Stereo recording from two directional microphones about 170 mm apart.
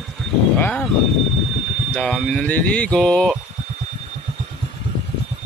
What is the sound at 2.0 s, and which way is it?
Speech, centre (ahead or behind).